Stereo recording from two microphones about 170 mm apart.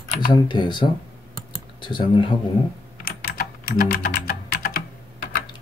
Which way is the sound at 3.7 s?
60° left (ahead or behind).